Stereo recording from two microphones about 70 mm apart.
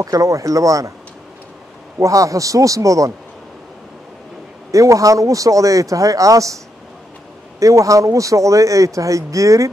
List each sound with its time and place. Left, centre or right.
0.0 s speech: right
2.0 s speech: right
4.6 s speech: right
7.6 s speech: right